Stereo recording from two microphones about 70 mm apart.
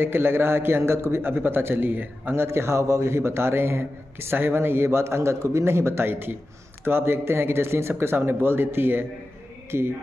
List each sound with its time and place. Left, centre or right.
0.0 s a man's voice: right
2.4 s a man's voice: right